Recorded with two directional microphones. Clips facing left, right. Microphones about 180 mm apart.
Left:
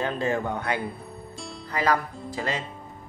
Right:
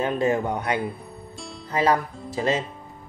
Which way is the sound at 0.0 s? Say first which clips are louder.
Right 4 dB; 20° right (ahead or behind).